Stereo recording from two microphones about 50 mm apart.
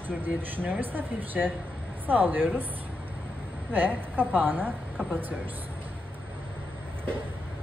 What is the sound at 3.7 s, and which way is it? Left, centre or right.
Speech, right.